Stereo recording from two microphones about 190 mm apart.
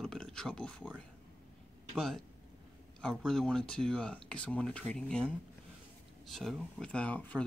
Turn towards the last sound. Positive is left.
turn(degrees=10)  # may be behind; listen again after turning